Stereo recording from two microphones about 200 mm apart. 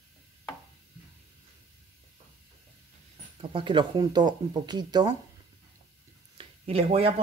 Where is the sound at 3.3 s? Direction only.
25° right (ahead or behind).